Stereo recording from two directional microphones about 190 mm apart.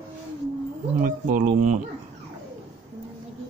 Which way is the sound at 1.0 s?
45° right (ahead or behind).